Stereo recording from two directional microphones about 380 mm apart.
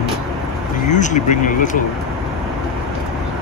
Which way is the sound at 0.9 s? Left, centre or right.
Centre.